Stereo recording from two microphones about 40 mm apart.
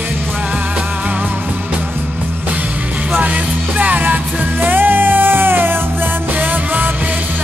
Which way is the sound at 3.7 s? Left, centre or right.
Right.